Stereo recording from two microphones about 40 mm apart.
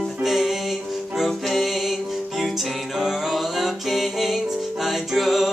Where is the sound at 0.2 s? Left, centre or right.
Centre.